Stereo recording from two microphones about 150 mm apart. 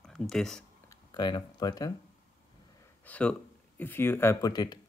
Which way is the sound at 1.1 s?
30° left (ahead or behind).